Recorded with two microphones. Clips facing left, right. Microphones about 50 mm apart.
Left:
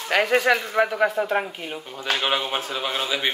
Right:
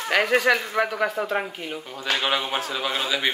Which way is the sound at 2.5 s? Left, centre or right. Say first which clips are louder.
Even; left.